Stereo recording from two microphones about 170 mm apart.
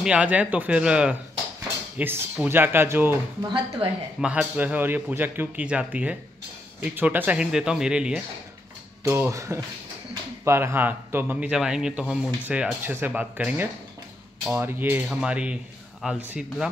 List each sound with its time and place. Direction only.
0.0 s a man's voice: 5° right (ahead or behind)
3.4 s speech: 30° right (ahead or behind)
4.2 s a man's voice: 5° right (ahead or behind)
9.0 s a man's voice: 15° right (ahead or behind)